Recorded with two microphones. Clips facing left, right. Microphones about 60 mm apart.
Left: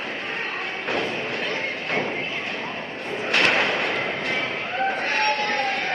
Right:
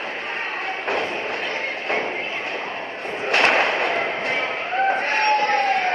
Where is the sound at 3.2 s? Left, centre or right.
Right.